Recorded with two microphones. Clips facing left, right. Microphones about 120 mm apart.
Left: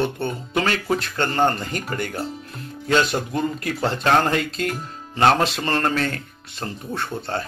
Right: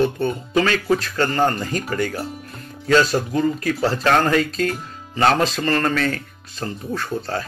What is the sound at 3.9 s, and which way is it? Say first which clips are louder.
Speech: right 1 dB; 25° left (ahead or behind).